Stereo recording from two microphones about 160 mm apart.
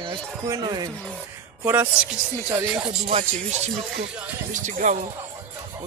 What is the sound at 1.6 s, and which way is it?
Speech, 15° right (ahead or behind).